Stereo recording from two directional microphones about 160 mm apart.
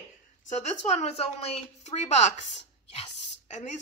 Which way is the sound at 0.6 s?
40° left (ahead or behind).